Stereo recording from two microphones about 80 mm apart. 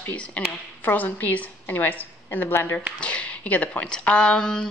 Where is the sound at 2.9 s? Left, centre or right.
Centre.